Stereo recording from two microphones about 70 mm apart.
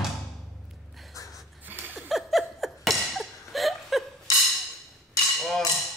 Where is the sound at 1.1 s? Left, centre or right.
Left.